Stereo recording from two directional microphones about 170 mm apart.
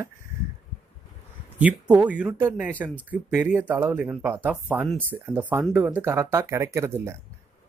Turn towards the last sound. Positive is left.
turn(degrees=-15)  # may be behind; listen again after turning